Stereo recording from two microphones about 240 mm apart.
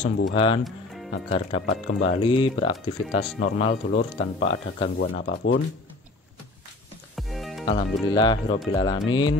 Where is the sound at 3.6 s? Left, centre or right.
Left.